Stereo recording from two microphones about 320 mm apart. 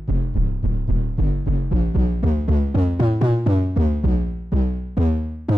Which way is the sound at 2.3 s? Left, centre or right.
Right.